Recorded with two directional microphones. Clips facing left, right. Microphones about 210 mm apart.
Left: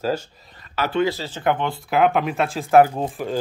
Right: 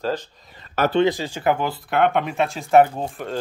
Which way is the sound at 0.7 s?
50° right (ahead or behind).